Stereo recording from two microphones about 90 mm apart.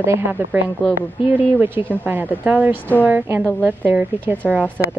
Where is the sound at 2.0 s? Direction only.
20° right (ahead or behind).